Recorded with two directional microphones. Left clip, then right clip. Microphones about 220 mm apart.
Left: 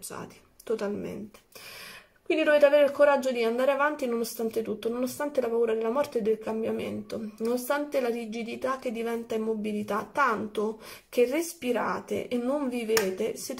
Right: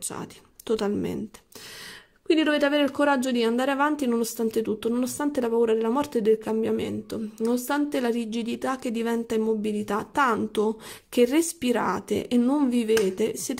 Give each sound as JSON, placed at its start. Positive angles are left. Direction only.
{"t": 0.1, "sound": "speech", "side_deg": -45}
{"t": 2.4, "sound": "a woman's voice", "side_deg": -45}